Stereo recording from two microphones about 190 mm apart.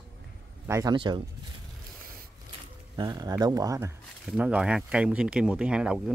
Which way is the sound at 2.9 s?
20° right (ahead or behind).